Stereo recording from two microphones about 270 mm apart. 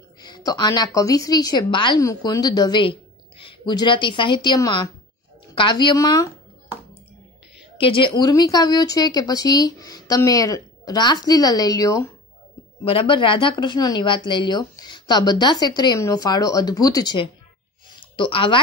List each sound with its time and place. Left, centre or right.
0.2 s a woman's voice: centre
7.7 s a woman's voice: centre